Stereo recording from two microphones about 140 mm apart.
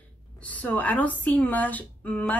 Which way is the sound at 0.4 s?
10° left (ahead or behind).